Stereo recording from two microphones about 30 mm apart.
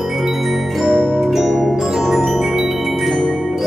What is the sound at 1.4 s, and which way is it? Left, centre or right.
Glockenspiel, centre.